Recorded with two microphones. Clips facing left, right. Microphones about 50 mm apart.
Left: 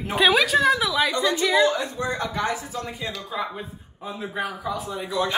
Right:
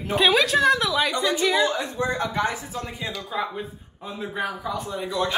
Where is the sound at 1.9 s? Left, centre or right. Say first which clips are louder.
Right 2 dB; right.